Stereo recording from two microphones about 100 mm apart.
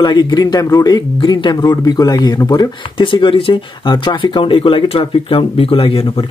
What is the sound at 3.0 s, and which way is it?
Speech, 55° left (ahead or behind).